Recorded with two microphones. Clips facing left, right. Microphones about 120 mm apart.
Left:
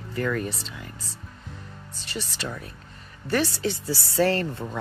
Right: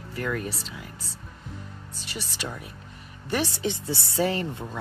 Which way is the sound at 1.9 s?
10° right (ahead or behind).